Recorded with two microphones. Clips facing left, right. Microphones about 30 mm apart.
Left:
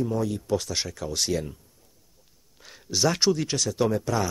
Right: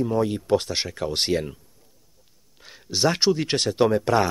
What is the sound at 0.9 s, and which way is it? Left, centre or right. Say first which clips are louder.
Speech: right 5 dB; right.